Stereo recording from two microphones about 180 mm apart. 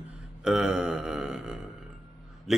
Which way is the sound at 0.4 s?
5° right (ahead or behind).